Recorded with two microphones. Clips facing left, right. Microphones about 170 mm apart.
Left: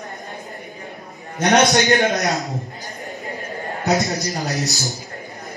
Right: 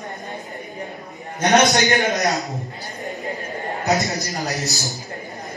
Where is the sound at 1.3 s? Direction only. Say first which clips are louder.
Left 1 dB; centre (ahead or behind).